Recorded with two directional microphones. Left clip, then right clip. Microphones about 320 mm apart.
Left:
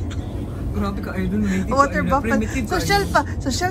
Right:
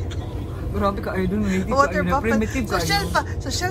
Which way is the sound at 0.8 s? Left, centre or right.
Right.